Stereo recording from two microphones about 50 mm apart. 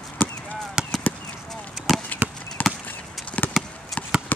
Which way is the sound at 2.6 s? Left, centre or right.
Left.